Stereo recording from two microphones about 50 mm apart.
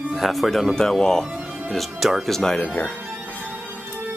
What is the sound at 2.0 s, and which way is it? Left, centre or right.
Speech, centre.